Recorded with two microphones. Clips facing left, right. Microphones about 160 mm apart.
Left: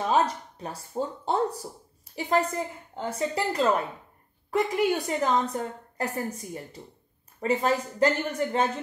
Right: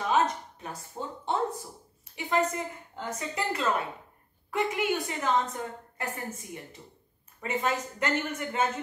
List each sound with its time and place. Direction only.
0.1 s a woman's voice: 35° left (ahead or behind)